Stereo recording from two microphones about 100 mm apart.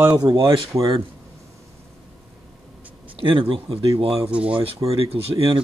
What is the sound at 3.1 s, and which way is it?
Speech, 65° right (ahead or behind).